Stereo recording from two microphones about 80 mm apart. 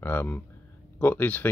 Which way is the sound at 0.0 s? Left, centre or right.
Left.